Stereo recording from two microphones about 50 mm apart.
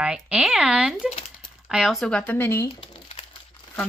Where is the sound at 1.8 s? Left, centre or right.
Centre.